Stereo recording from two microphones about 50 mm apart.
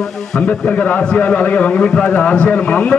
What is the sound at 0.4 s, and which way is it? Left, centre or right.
A man's voice, left.